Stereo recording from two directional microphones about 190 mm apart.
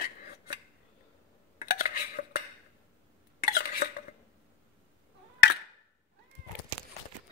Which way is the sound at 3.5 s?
50° left (ahead or behind).